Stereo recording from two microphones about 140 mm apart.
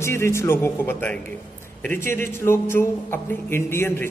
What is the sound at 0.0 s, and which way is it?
Speech, 20° left (ahead or behind).